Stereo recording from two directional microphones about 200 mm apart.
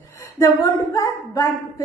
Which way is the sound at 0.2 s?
15° left (ahead or behind).